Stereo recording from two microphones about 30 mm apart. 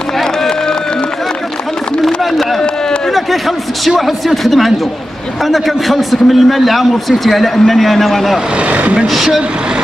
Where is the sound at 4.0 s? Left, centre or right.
Centre.